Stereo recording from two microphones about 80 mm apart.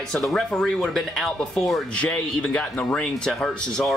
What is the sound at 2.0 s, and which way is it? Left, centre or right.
Speech, centre.